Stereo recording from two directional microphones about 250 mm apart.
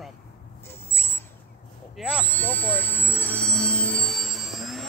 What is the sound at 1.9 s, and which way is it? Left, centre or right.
Speech, centre.